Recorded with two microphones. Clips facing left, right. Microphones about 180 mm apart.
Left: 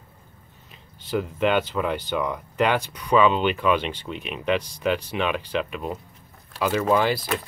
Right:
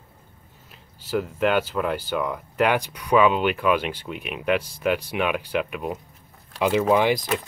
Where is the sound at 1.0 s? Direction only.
5° right (ahead or behind).